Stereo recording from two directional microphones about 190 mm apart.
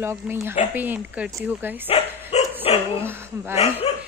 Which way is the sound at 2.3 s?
35° left (ahead or behind).